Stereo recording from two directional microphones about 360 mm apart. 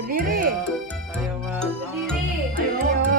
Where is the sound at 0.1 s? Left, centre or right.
Right.